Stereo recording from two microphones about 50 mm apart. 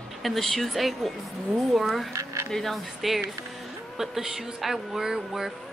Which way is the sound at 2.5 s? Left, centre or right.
Centre.